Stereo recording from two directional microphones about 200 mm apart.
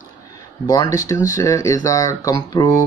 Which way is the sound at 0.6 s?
20° left (ahead or behind).